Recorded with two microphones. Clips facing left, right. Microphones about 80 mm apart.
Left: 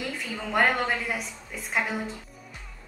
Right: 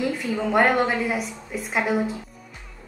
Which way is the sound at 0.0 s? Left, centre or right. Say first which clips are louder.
Right 9 dB; centre.